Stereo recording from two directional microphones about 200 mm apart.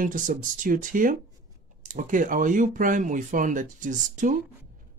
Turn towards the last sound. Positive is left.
turn(degrees=-40)  # may be behind; listen again after turning